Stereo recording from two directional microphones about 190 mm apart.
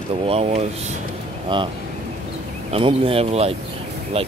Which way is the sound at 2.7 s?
30° right (ahead or behind).